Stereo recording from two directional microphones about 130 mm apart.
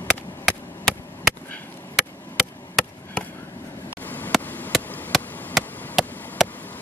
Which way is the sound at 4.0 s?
15° left (ahead or behind).